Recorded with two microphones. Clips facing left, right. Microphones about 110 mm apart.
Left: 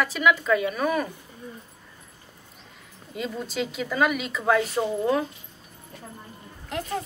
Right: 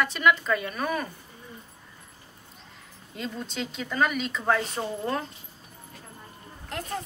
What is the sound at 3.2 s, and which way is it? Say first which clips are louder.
Speech: left 4 dB; 5° left (ahead or behind).